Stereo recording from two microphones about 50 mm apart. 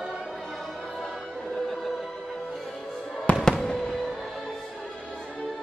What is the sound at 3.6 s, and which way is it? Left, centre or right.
Fireworks, centre.